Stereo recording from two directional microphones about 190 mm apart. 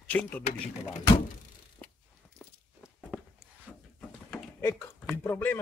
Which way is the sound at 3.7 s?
Centre (ahead or behind).